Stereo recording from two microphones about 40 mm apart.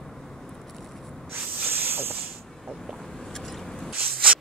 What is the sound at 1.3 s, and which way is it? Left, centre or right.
Hiss, right.